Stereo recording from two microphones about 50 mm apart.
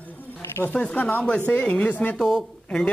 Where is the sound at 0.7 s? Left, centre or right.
Centre.